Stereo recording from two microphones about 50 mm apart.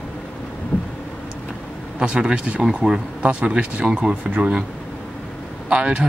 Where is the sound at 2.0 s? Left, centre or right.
Centre.